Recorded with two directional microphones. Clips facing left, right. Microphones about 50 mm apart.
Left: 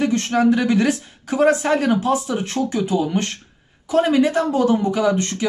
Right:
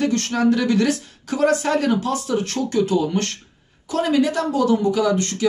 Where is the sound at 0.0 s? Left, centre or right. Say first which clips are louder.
Left 2 dB; centre.